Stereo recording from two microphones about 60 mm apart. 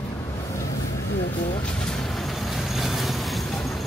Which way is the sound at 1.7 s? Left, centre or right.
Centre.